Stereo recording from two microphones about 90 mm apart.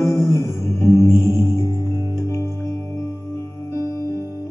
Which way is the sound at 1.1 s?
30° left (ahead or behind).